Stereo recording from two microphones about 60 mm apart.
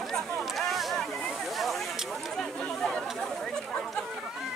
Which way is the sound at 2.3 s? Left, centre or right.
Centre.